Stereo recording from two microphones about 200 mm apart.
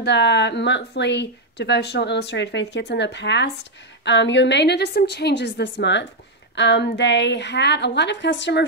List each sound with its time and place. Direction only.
0.0 s speech: 60° left (ahead or behind)